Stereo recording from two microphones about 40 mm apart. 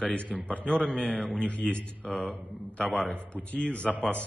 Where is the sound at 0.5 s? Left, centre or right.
Left.